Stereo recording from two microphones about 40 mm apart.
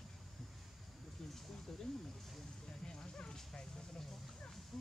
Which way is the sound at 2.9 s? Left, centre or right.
Centre.